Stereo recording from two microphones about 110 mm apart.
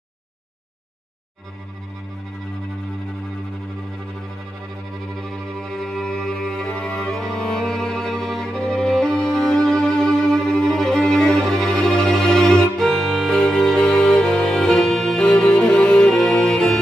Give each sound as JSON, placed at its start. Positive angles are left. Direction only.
{"t": 5.6, "sound": "music", "side_deg": 5}